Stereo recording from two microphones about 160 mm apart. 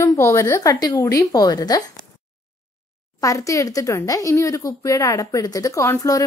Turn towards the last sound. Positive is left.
turn(degrees=20)  # may be behind; listen again after turning